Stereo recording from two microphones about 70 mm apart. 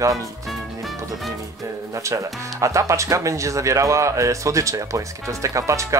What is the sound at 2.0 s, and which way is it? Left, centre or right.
Speech, right.